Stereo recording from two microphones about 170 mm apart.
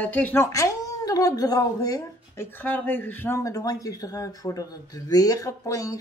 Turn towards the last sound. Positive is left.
turn(degrees=20)  # may be behind; listen again after turning